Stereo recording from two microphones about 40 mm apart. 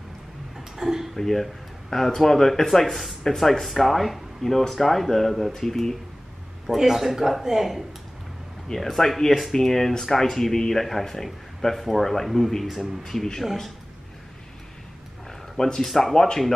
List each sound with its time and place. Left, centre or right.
0.7 s tick-tock: centre
1.1 s speech: centre
6.7 s speech: centre
8.7 s speech: centre
15.5 s speech: centre